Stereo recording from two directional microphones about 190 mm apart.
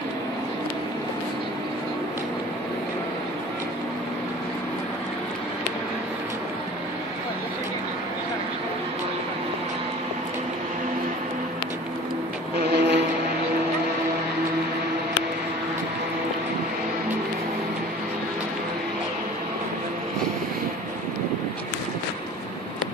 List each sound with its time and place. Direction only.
12.5 s vehicle: 60° right (ahead or behind)